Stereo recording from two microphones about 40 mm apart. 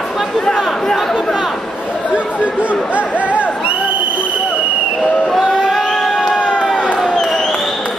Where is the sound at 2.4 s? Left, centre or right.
Right.